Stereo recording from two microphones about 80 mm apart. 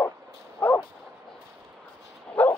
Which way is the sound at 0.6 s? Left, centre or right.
Centre.